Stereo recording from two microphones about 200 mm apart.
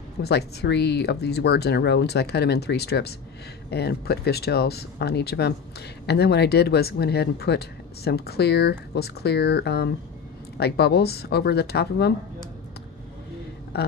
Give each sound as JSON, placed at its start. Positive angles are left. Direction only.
{"t": 0.2, "sound": "speech", "side_deg": 55}